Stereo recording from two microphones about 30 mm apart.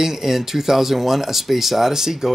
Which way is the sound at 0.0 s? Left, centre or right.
Centre.